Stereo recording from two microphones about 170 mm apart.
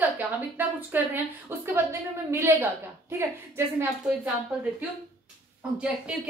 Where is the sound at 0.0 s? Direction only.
10° right (ahead or behind).